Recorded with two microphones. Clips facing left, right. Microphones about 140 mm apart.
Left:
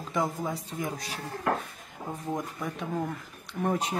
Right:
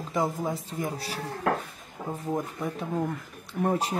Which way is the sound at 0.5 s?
Centre (ahead or behind).